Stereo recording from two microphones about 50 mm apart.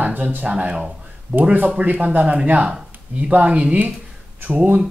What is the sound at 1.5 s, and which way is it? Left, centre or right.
Speech, right.